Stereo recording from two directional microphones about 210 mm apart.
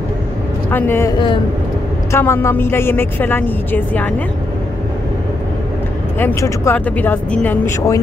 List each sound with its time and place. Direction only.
0.7 s a woman's voice: 10° left (ahead or behind)
2.1 s a woman's voice: 10° left (ahead or behind)
6.1 s a woman's voice: 10° left (ahead or behind)